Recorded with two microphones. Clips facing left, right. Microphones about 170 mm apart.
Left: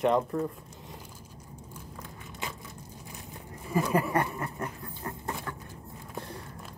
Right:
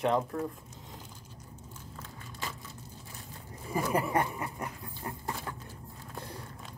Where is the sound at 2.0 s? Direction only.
15° left (ahead or behind).